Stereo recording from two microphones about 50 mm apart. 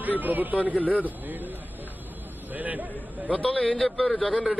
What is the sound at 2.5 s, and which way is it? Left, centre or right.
Speech, right.